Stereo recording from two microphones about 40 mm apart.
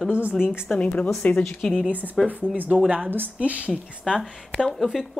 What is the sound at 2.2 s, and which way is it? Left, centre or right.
Speech, right.